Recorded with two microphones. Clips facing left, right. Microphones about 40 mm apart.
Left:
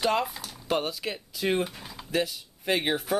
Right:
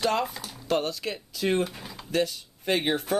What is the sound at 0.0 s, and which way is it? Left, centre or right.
Speech, centre.